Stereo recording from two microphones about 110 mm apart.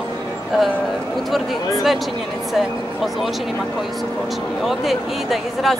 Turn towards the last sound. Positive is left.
turn(degrees=0)  # may be behind; listen again after turning